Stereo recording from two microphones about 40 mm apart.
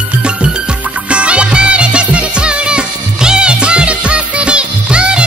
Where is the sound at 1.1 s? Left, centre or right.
Right.